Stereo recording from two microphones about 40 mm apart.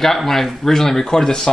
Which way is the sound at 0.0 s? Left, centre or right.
Centre.